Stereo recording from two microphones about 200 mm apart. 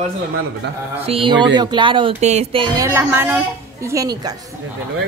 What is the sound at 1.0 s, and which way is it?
Speech, 25° right (ahead or behind).